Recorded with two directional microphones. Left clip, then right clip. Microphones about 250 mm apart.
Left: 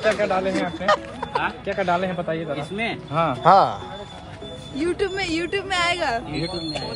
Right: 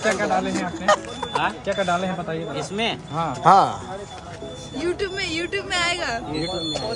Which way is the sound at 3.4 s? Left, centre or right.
Centre.